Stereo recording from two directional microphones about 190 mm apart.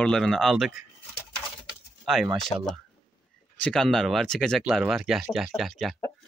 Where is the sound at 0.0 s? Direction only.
5° left (ahead or behind).